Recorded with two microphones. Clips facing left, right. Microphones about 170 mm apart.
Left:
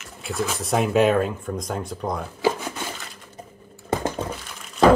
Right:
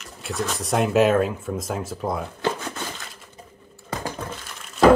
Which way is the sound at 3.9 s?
25° left (ahead or behind).